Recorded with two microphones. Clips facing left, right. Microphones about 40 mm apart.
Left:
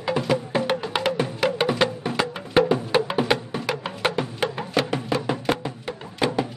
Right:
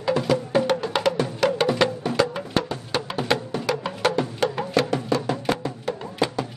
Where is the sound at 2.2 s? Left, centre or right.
Left.